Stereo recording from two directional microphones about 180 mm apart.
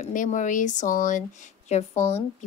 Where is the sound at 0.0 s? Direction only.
45° left (ahead or behind).